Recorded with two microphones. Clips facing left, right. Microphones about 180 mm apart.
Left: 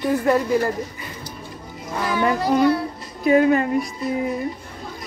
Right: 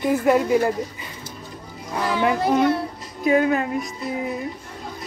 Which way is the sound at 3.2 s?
Centre (ahead or behind).